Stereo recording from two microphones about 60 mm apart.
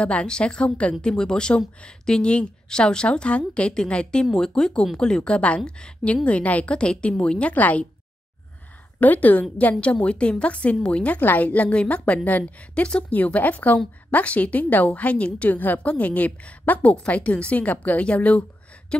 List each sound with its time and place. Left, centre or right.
0.0 s a woman's voice: centre
9.0 s a woman's voice: left
11.1 s a woman's voice: left